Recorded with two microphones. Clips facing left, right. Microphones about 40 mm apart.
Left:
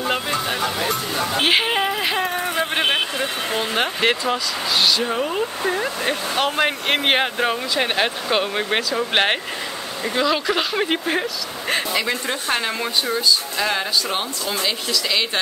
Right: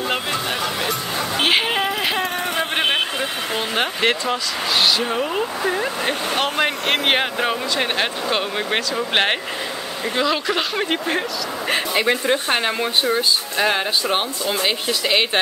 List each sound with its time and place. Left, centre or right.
0.1 s music: centre
2.3 s a sound: right
2.8 s speech: centre
12.3 s speech: right
14.1 s speech: right